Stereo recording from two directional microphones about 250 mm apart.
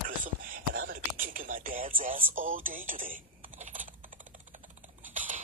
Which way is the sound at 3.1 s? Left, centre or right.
Right.